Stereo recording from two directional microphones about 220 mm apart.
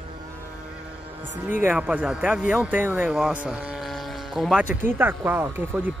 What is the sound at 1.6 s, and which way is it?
Speech, 10° right (ahead or behind).